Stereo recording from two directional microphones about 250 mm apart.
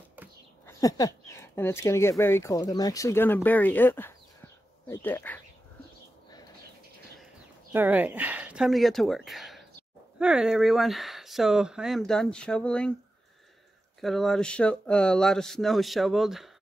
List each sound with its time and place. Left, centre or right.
0.7 s speech: centre
7.7 s speech: centre
14.0 s speech: centre